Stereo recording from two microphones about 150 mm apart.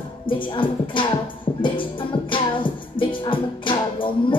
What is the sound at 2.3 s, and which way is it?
Music, 35° left (ahead or behind).